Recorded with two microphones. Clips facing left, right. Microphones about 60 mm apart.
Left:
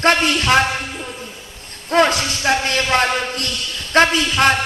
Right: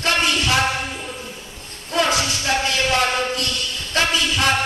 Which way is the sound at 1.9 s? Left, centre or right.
Left.